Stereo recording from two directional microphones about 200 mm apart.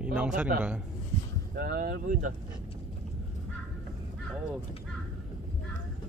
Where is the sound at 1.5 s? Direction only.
50° right (ahead or behind).